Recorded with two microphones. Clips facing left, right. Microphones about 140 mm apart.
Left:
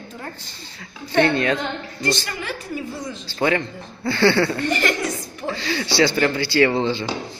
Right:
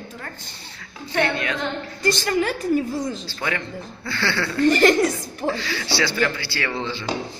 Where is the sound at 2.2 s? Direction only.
45° right (ahead or behind).